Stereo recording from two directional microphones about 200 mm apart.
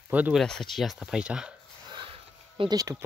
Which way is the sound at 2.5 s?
20° right (ahead or behind).